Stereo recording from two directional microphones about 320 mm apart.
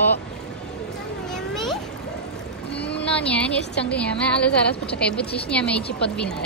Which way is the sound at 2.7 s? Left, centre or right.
Left.